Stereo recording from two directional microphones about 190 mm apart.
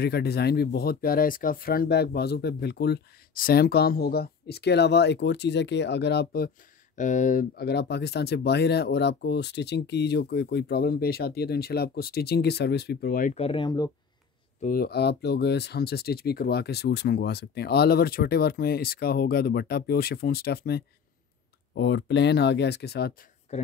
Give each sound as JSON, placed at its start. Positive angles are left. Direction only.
{"t": 0.0, "sound": "speech", "side_deg": 55}
{"t": 7.0, "sound": "speech", "side_deg": 40}
{"t": 13.3, "sound": "speech", "side_deg": 30}
{"t": 14.6, "sound": "speech", "side_deg": 50}
{"t": 23.5, "sound": "speech", "side_deg": 35}